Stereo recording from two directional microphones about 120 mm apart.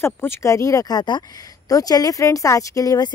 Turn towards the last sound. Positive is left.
turn(degrees=30)  # may be behind; listen again after turning